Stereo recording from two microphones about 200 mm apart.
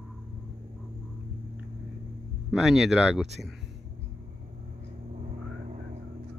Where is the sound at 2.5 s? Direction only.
Centre (ahead or behind).